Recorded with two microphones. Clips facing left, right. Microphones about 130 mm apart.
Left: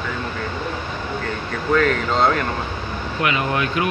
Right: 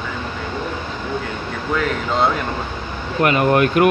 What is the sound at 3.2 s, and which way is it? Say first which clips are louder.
Speech: right 7 dB; 50° right (ahead or behind).